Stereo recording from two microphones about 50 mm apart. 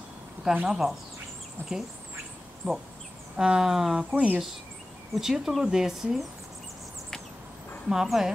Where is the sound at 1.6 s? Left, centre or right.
Left.